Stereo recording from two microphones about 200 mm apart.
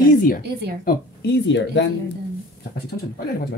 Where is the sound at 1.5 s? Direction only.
65° left (ahead or behind).